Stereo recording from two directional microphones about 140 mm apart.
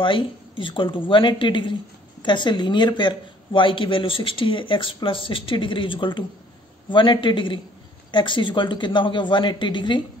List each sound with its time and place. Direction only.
0.0 s speech: 35° left (ahead or behind)